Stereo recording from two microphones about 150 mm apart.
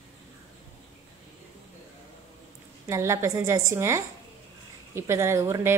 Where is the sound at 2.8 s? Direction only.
20° right (ahead or behind).